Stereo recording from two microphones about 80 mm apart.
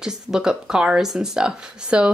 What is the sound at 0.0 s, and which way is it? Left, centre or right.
Speech, centre.